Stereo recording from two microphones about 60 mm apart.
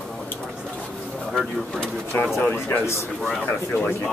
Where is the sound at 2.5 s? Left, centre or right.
Left.